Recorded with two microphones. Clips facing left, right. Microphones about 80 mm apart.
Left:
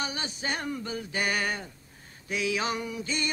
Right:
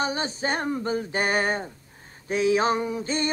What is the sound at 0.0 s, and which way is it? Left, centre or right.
Male singing, right.